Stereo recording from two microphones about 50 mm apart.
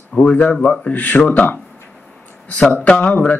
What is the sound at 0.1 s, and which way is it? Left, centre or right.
Speech, left.